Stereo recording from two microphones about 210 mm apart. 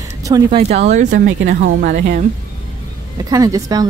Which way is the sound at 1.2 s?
60° right (ahead or behind).